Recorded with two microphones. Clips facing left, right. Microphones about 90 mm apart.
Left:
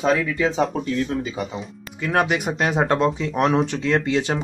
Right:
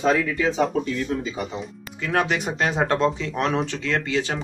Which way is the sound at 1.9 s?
10° left (ahead or behind).